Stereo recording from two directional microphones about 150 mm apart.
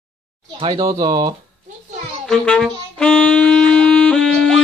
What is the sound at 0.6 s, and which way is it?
Speech, 30° right (ahead or behind).